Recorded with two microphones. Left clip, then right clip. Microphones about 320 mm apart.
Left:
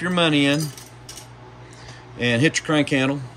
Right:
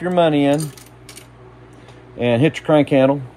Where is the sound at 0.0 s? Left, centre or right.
Centre.